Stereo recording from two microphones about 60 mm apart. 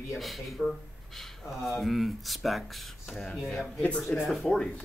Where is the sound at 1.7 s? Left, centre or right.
Centre.